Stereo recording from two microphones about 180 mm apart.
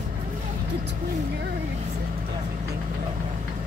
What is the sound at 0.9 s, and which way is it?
Speech, 70° right (ahead or behind).